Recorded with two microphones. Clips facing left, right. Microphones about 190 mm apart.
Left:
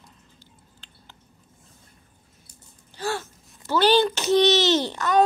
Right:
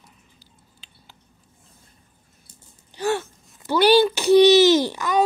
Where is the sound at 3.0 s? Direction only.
15° right (ahead or behind).